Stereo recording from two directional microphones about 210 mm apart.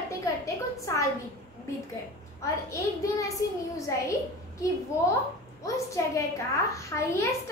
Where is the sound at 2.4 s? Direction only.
15° left (ahead or behind).